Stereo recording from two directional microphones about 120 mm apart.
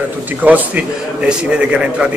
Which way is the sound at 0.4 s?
15° right (ahead or behind).